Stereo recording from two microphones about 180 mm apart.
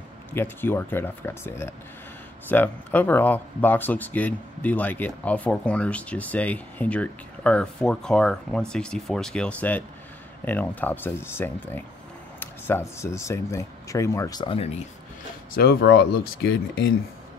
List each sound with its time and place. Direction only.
0.3 s speech: 10° left (ahead or behind); by 14.8 s 30° left (ahead or behind)
15.5 s speech: 55° left (ahead or behind); by 16.9 s 85° left